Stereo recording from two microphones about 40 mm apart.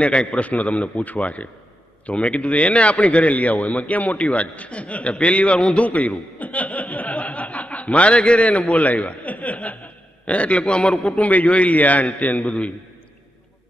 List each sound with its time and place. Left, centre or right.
0.0 s a man's voice: left
5.9 s chuckle: left
10.2 s a man's voice: left
11.2 s a man's voice: left